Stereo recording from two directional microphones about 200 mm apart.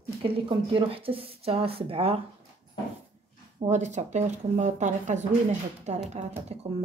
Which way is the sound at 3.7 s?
35° right (ahead or behind).